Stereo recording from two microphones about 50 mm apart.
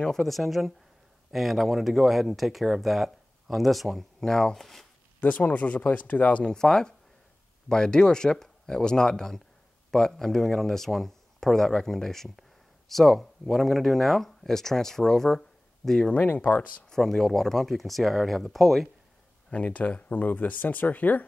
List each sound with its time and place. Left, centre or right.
0.2 s speech: centre
5.2 s speech: left
6.4 s speech: centre
16.1 s speech: left
16.9 s speech: centre
19.5 s speech: left